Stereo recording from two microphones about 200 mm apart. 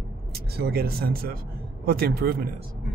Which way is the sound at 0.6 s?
50° right (ahead or behind).